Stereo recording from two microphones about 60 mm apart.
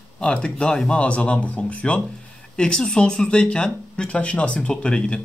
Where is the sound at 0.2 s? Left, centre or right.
Centre.